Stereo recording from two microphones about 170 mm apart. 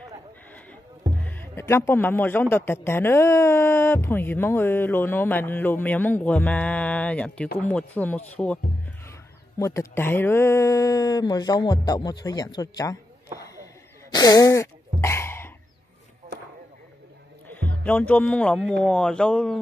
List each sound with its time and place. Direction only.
1.2 s a man's voice: 10° left (ahead or behind)
9.6 s speech: 20° left (ahead or behind)
14.1 s a sound: 20° left (ahead or behind)
17.5 s speech: 10° left (ahead or behind)